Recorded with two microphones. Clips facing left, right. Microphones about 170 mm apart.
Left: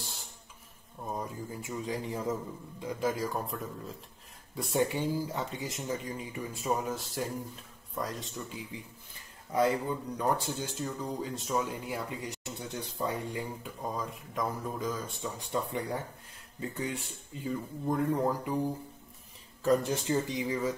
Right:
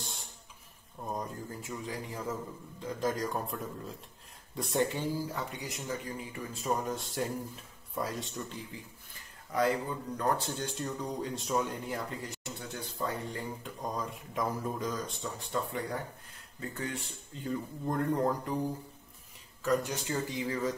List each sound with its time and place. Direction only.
0.0 s a sound: centre (ahead or behind)
1.9 s speech: 20° left (ahead or behind); by 3.9 s centre (ahead or behind)
4.6 s speech: 10° left (ahead or behind)
6.6 s speech: 5° left (ahead or behind)
9.5 s speech: 20° left (ahead or behind)
10.1 s speech: 10° left (ahead or behind)
15.3 s speech: 20° left (ahead or behind)
17.4 s speech: 5° left (ahead or behind)
19.6 s speech: 30° left (ahead or behind); by 20.7 s 10° left (ahead or behind)